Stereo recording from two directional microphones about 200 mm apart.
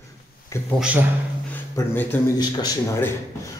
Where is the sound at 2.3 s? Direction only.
20° left (ahead or behind).